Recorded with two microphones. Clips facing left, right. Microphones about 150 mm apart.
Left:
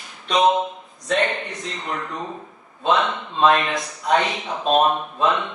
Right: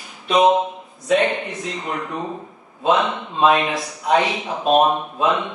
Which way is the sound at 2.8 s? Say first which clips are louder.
Right 2 dB; 5° right (ahead or behind).